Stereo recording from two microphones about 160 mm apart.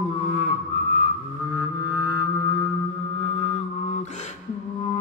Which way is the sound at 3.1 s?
35° left (ahead or behind).